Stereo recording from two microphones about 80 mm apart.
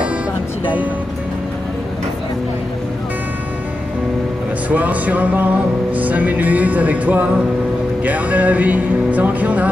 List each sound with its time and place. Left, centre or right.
4.6 s music: centre